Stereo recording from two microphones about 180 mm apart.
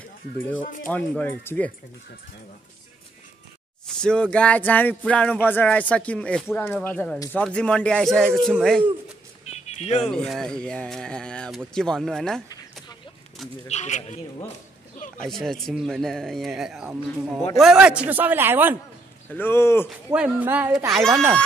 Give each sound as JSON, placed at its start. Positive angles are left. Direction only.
{"t": 0.8, "sound": "a sound", "side_deg": 10}
{"t": 3.8, "sound": "a sound", "side_deg": 5}
{"t": 7.3, "sound": "speech", "side_deg": 5}
{"t": 9.5, "sound": "music", "side_deg": 40}
{"t": 10.1, "sound": "speech", "side_deg": 0}
{"t": 13.7, "sound": "speech", "side_deg": 40}
{"t": 15.1, "sound": "speech", "side_deg": 0}
{"t": 19.2, "sound": "a sound", "side_deg": 10}
{"t": 20.1, "sound": "speech", "side_deg": -10}